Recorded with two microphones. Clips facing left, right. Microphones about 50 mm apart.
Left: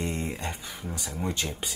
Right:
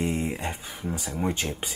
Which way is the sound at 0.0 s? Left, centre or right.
Centre.